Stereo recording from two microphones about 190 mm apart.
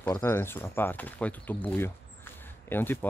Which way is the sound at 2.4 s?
10° left (ahead or behind).